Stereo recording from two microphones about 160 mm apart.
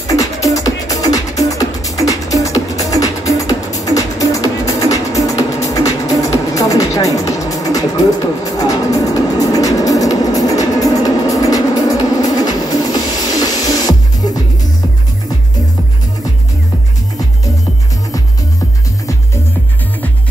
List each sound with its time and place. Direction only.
0.0 s music: 20° left (ahead or behind)